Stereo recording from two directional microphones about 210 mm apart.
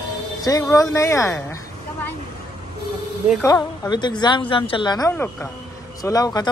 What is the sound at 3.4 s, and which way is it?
A woman's voice, 20° left (ahead or behind).